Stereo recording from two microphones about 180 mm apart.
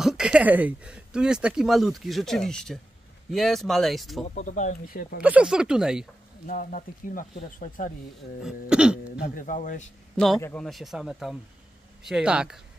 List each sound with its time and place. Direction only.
0.0 s speech: 5° right (ahead or behind)
4.4 s speech: 40° left (ahead or behind)
5.2 s speech: 5° right (ahead or behind)
6.4 s speech: 50° left (ahead or behind)
8.5 s speech: 5° right (ahead or behind)
9.2 s speech: 50° left (ahead or behind)
10.1 s a man's voice: centre (ahead or behind)